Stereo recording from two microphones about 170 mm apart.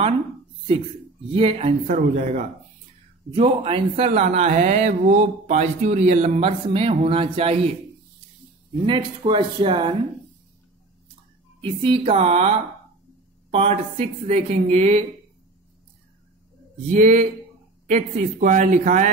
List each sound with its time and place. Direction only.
1.3 s speech: 35° right (ahead or behind)
2.0 s speech: 45° right (ahead or behind)
3.3 s speech: 35° right (ahead or behind)
8.8 s speech: 30° right (ahead or behind)
11.6 s speech: 30° right (ahead or behind)
16.7 s speech: 40° right (ahead or behind)